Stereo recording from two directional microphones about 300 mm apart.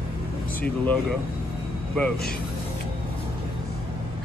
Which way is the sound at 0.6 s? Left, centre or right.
Centre.